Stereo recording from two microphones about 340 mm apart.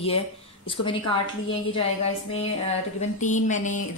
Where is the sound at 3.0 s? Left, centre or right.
Left.